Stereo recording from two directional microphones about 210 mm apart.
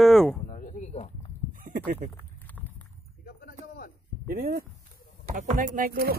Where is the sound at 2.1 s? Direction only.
10° left (ahead or behind).